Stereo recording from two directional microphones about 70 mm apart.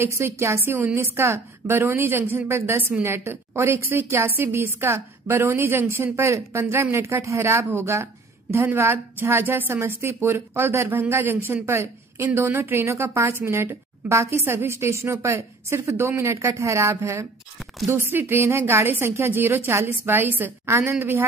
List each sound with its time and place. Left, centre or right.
0.0 s a woman's voice: right